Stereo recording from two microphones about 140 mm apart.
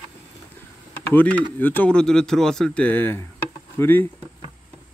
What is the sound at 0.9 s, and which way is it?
Speech, 10° left (ahead or behind).